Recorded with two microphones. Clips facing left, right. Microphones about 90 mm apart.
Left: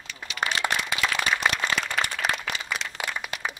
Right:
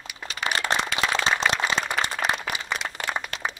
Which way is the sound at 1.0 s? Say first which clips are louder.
Even; 25° right (ahead or behind).